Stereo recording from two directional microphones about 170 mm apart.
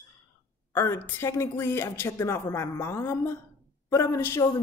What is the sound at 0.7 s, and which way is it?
Speech, 15° left (ahead or behind).